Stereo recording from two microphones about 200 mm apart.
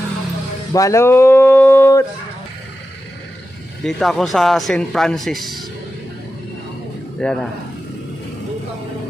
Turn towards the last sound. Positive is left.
turn(degrees=5)  # may be behind; listen again after turning